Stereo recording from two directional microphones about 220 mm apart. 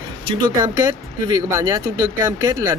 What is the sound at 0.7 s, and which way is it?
Speech, 15° right (ahead or behind).